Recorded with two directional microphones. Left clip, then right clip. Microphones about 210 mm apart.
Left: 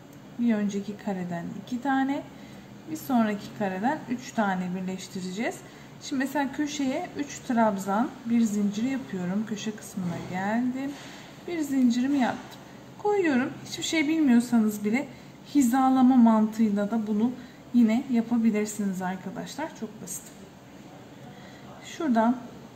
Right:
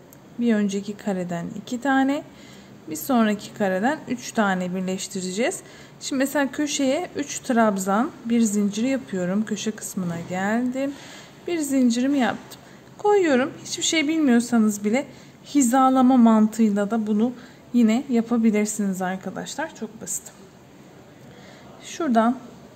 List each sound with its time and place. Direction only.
0.5 s a woman's voice: 55° right (ahead or behind)
21.8 s a woman's voice: 45° right (ahead or behind)